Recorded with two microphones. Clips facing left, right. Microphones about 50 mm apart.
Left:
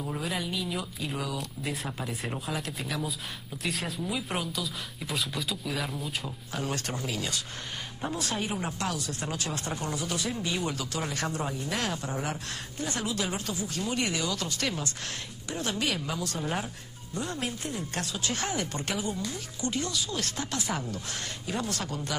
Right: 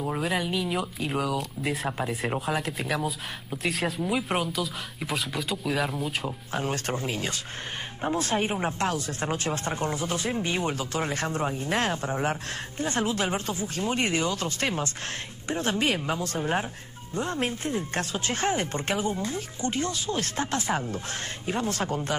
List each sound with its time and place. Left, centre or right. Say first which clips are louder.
0.2 s speech: right 5 dB; centre
6.2 s speech: right 4 dB; right